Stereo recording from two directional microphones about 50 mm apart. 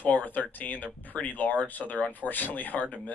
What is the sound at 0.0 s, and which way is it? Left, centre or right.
Speech, left.